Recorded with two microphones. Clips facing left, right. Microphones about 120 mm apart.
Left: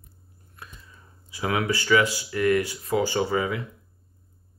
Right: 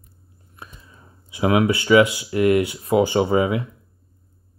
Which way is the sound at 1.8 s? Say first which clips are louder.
Right 6 dB; 20° right (ahead or behind).